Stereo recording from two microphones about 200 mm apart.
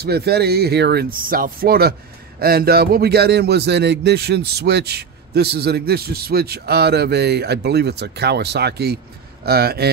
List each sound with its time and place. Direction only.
0.0 s speech: 50° right (ahead or behind)